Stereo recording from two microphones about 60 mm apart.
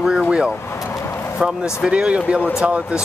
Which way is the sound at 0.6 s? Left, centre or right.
Left.